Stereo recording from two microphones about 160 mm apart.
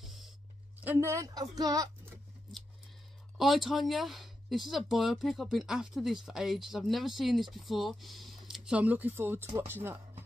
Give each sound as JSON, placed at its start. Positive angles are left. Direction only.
{"t": 0.0, "sound": "a sound", "side_deg": 0}
{"t": 0.7, "sound": "a woman's voice", "side_deg": -15}
{"t": 3.3, "sound": "speech", "side_deg": 0}